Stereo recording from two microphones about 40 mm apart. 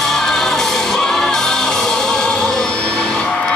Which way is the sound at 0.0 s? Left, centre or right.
Centre.